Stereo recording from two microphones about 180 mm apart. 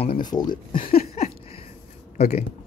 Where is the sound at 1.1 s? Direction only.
35° left (ahead or behind).